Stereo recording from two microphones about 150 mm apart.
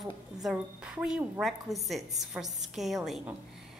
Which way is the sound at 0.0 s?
Centre (ahead or behind).